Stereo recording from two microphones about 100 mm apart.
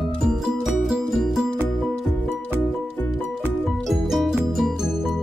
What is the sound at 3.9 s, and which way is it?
Music, centre (ahead or behind).